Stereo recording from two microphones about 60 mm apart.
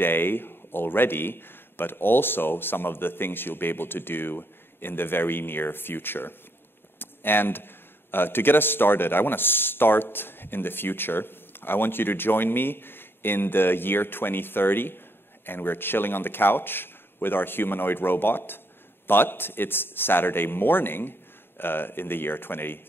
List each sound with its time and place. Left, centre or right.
0.0 s a man's voice: left